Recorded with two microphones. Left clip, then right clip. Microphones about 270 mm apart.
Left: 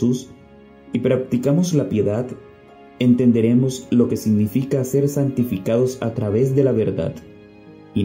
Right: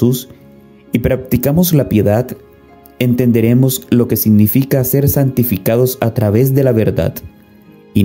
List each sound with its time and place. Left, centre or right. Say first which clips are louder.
0.0 s speech: right 6 dB; right